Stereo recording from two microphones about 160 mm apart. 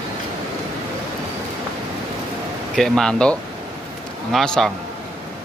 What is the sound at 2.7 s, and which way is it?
Speech, 5° left (ahead or behind).